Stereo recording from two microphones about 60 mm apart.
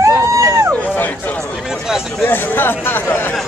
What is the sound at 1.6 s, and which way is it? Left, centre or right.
Speech, centre.